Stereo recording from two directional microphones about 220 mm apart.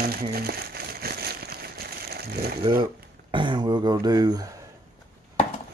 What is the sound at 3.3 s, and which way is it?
Speech, 20° right (ahead or behind).